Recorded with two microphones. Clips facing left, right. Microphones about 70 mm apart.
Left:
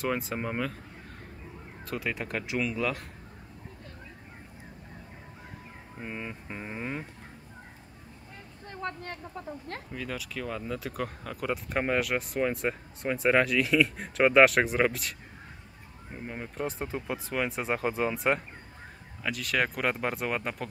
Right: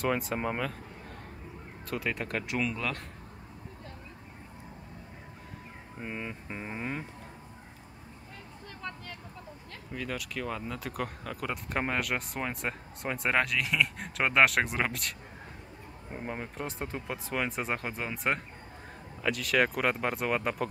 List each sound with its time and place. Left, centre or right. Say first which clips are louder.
0.0 s speech: right 1 dB; centre
1.9 s speech: even; centre
5.9 s speech: even; centre
8.6 s vehicle: left 6 dB; left
9.8 s speech: right 4 dB; centre
16.3 s speech: left 3 dB; centre